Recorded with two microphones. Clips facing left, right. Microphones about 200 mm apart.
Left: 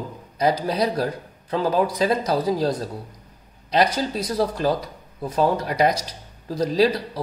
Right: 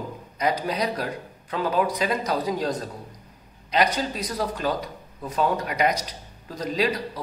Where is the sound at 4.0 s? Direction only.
35° left (ahead or behind).